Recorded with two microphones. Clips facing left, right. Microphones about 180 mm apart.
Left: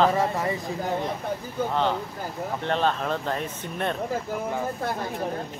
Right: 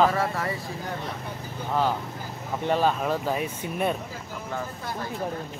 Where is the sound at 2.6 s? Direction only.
10° right (ahead or behind).